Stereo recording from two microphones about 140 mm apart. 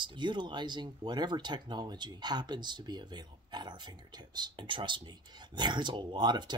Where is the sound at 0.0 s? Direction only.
35° right (ahead or behind).